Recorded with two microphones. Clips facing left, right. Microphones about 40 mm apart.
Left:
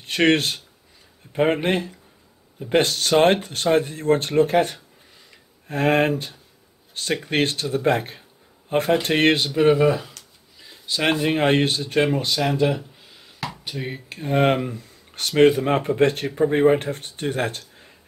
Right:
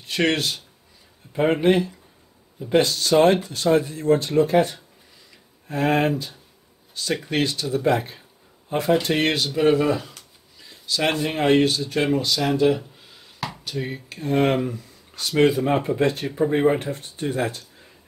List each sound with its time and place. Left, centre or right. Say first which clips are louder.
0.0 s speech: left 3 dB; left
6.9 s a sound: left 1 dB; left
7.2 s speech: left 2 dB; left
9.5 s speech: left 2 dB; centre
11.0 s speech: left 2 dB; left
11.4 s speech: right 5 dB; left
12.4 s speech: right 2 dB; centre
13.4 s a sound: even; centre
13.7 s speech: right 4 dB; centre
15.1 s speech: left 3 dB; left